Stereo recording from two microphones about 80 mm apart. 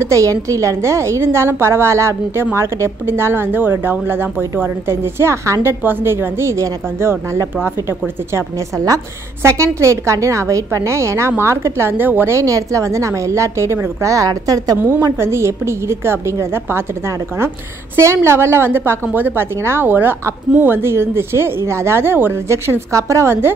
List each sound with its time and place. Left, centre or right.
0.0 s a woman's voice: right
12.4 s a woman's voice: right
14.8 s a woman's voice: right
17.9 s a woman's voice: right